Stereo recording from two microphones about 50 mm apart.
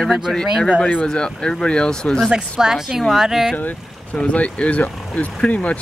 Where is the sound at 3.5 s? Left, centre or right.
Left.